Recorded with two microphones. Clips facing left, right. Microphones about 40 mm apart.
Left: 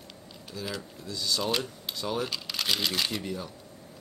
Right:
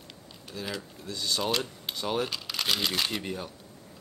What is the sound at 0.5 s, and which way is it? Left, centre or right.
Speech, right.